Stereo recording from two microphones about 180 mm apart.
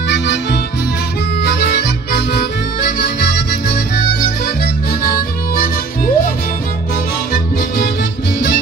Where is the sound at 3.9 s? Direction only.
60° left (ahead or behind).